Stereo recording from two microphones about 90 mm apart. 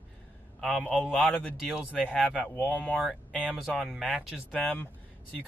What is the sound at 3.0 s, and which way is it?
Speech, 10° right (ahead or behind).